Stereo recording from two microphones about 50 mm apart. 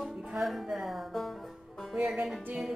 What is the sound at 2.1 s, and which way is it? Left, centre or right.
Speech, right.